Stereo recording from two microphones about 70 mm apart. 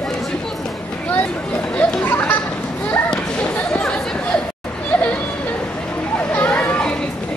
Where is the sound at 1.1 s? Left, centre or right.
Left.